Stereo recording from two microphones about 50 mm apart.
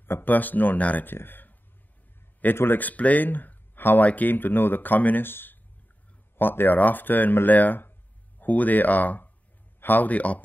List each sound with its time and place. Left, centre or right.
0.0 s speech: left
1.1 s speech: left
2.8 s speech: left